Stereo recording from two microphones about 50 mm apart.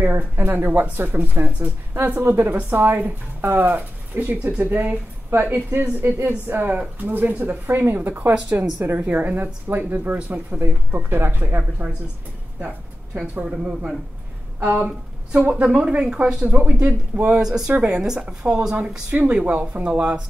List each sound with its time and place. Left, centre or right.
0.0 s speech: right
2.8 s speech: right
7.7 s a woman's voice: right
9.0 s speech: right
12.5 s a sound: right
14.6 s speech: right
15.3 s speech: right
17.4 s speech: centre
19.2 s speech: right